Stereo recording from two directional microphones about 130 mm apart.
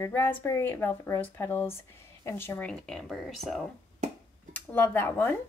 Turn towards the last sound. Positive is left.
turn(degrees=15)  # may be behind; listen again after turning